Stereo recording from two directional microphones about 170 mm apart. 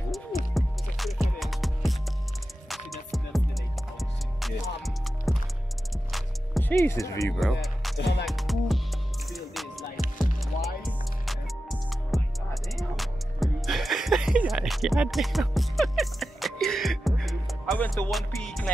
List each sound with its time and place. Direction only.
0.6 s music: centre (ahead or behind)
6.6 s speech: 15° left (ahead or behind)
7.3 s speech: centre (ahead or behind)
8.0 s music: 85° left
8.3 s music: centre (ahead or behind)